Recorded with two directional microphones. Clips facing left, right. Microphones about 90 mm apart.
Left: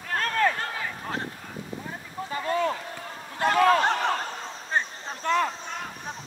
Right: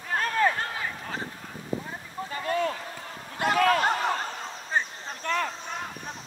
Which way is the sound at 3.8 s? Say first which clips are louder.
Left 1 dB; 10° right (ahead or behind).